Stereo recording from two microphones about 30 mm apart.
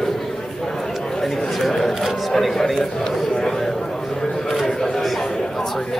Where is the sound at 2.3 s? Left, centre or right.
Centre.